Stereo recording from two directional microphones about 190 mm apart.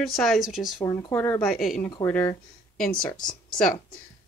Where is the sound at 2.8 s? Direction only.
50° left (ahead or behind).